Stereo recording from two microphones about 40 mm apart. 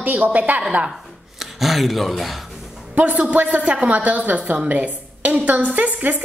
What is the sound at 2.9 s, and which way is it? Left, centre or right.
A woman's voice, right.